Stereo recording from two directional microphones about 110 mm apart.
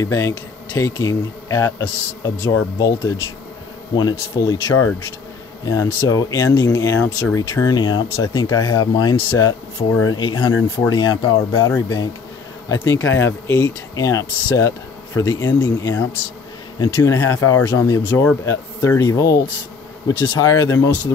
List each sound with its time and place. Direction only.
0.0 s speech: 30° left (ahead or behind)
4.4 s speech: 30° left (ahead or behind)
7.7 s speech: 40° left (ahead or behind)
12.8 s speech: 25° left (ahead or behind)
17.2 s speech: 20° left (ahead or behind)
17.6 s speech: 35° left (ahead or behind)
20.1 s speech: 50° left (ahead or behind)
20.3 s speech: 30° left (ahead or behind)